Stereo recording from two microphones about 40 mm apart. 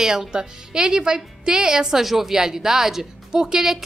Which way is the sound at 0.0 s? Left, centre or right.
Centre.